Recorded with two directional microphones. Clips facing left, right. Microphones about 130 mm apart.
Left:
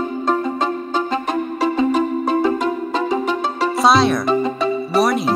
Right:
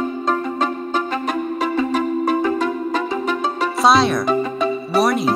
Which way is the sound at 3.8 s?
Centre (ahead or behind).